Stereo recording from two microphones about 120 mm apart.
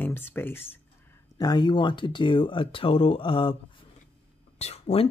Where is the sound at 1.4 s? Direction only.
35° left (ahead or behind).